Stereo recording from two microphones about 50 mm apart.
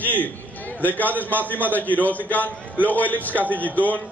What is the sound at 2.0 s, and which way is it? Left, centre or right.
Speech, left.